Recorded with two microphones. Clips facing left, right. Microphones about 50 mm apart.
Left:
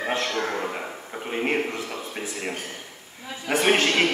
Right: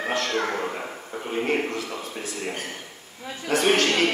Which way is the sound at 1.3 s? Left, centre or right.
Centre.